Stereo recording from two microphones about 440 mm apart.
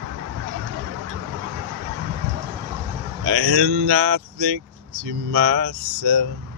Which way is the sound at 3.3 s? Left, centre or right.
Right.